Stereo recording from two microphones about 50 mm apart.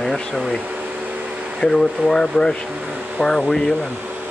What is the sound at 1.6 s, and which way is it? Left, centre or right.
Speech, centre.